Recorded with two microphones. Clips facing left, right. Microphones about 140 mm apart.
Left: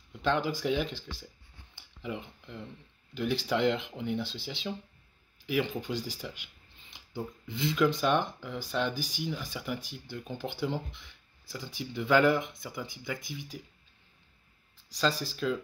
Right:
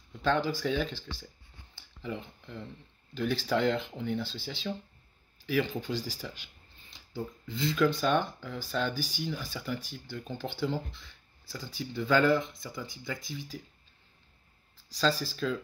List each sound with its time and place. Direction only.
0.4 s speech: 15° left (ahead or behind)
1.8 s a sound: 15° left (ahead or behind)
3.2 s speech: 10° left (ahead or behind)
7.4 s speech: 20° left (ahead or behind)
15.0 s speech: 15° left (ahead or behind)